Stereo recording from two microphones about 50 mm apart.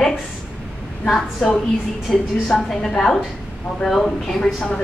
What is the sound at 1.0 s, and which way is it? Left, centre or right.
A woman's voice, centre.